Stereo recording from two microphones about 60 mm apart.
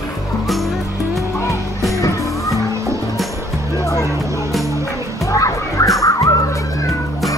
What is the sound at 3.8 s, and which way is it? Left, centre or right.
Music, left.